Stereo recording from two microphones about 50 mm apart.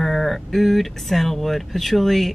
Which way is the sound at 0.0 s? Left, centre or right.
Centre.